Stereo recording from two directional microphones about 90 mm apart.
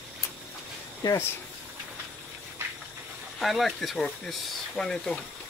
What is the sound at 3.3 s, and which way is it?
Speech, centre (ahead or behind).